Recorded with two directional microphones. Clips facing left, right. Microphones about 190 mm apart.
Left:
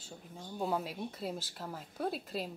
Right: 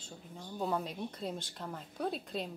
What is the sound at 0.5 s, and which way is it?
Speech, 5° left (ahead or behind).